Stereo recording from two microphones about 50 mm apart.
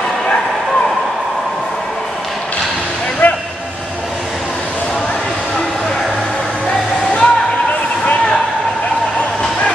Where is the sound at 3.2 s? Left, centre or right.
Left.